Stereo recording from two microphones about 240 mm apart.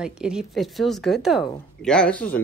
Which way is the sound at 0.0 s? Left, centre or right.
Centre.